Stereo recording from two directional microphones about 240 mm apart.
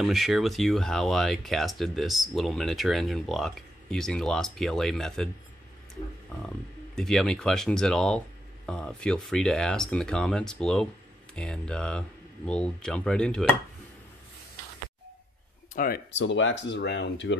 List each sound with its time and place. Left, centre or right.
0.0 s speech: centre
7.0 s speech: centre
15.7 s speech: left